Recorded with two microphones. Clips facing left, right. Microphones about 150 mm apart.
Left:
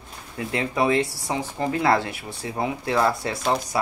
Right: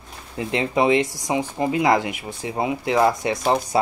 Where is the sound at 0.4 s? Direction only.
20° right (ahead or behind).